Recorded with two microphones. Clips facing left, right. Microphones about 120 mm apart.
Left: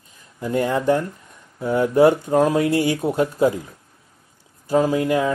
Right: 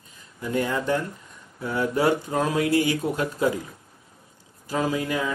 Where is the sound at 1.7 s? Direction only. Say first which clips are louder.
Left 7 dB; 45° left (ahead or behind).